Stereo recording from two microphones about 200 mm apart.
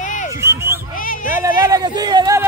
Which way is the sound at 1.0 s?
45° left (ahead or behind).